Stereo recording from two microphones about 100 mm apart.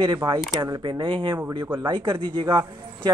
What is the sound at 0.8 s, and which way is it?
Speech, 60° right (ahead or behind).